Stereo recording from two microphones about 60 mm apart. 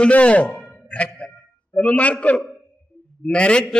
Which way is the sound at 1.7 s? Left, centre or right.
Left.